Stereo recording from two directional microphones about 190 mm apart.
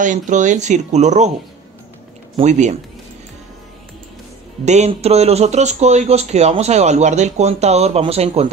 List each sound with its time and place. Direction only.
0.0 s speech: 40° right (ahead or behind)
2.3 s speech: 40° right (ahead or behind)
4.6 s speech: 35° right (ahead or behind)